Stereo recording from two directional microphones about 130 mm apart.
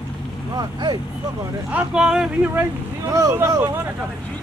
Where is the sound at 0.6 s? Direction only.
35° right (ahead or behind).